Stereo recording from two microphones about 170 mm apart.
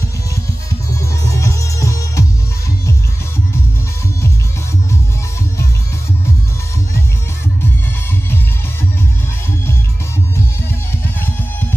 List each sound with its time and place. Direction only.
1.0 s music: 15° left (ahead or behind)